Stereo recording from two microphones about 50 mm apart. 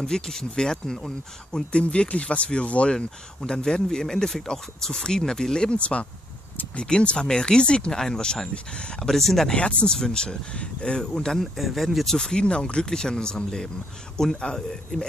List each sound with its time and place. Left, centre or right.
0.0 s speech: centre
9.1 s speech: centre
9.6 s speech: left
11.5 s speech: centre
12.2 s speech: centre